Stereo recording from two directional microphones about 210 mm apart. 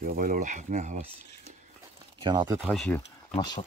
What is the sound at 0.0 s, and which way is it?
Speech, 40° right (ahead or behind).